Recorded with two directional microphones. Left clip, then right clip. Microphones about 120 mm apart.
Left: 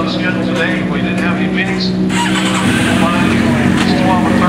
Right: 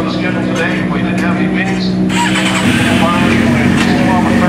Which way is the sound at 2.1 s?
Centre (ahead or behind).